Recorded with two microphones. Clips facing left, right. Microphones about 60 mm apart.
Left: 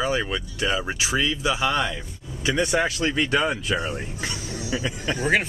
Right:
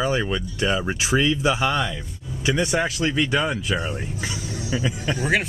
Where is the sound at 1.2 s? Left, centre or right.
Right.